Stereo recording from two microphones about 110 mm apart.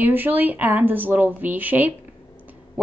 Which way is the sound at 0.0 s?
20° right (ahead or behind).